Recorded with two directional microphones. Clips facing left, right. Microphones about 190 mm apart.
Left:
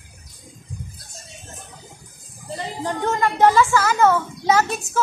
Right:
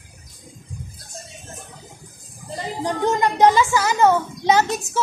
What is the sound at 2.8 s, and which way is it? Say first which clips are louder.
Speech: right 2 dB; 15° right (ahead or behind).